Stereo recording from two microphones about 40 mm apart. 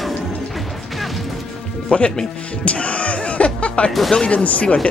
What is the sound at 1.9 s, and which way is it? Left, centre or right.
Music, left.